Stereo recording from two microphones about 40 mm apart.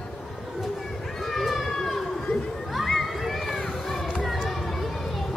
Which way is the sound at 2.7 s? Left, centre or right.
Centre.